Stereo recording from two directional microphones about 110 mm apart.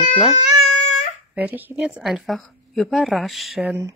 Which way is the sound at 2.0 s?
Centre (ahead or behind).